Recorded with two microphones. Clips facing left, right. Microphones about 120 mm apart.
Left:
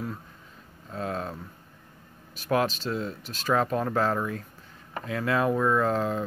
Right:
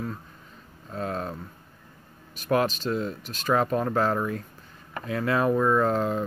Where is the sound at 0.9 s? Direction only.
Centre (ahead or behind).